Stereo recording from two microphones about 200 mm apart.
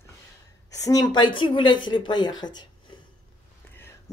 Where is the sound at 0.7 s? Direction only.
15° left (ahead or behind).